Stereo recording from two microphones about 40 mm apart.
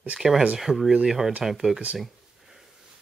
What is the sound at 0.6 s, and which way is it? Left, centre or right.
Speech, centre.